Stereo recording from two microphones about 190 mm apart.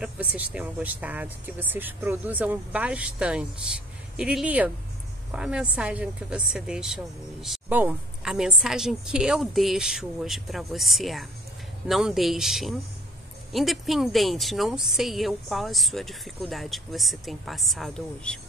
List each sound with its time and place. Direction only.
0.0 s a woman's voice: 5° right (ahead or behind)